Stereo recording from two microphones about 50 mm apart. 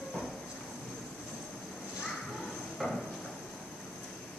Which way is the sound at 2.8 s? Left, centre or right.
Centre.